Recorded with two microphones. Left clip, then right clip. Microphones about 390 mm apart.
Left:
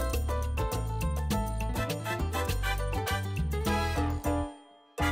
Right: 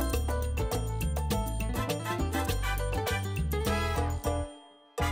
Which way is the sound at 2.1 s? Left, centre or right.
Right.